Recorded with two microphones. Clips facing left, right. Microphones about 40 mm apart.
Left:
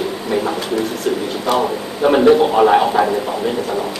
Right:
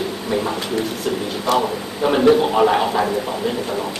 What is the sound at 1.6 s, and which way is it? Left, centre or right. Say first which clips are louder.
A man's voice: left 4 dB; centre.